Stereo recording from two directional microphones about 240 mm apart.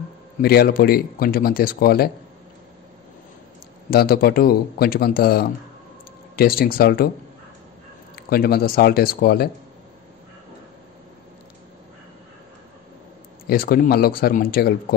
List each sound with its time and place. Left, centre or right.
0.4 s speech: left
3.9 s speech: left
8.2 s speech: left
13.5 s speech: left